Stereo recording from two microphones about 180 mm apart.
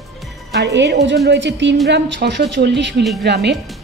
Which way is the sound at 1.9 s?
70° right (ahead or behind).